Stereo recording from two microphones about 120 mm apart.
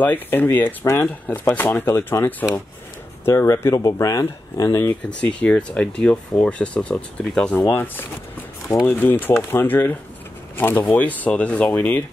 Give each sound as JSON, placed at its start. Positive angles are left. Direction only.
{"t": 0.0, "sound": "speech", "side_deg": 15}
{"t": 4.8, "sound": "speech", "side_deg": 10}